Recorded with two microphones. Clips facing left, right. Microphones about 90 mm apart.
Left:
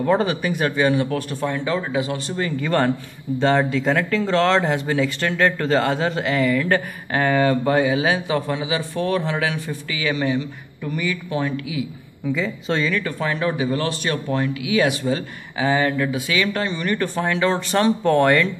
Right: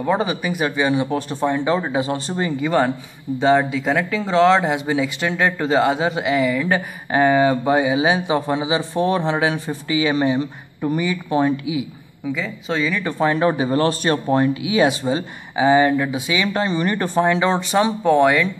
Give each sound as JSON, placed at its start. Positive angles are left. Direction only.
{"t": 0.0, "sound": "speech", "side_deg": -5}
{"t": 2.4, "sound": "speech", "side_deg": -10}
{"t": 12.4, "sound": "speech", "side_deg": 0}
{"t": 13.0, "sound": "speech", "side_deg": -30}